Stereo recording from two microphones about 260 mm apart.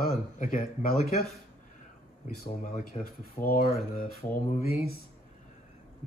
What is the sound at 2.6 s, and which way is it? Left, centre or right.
Speech, left.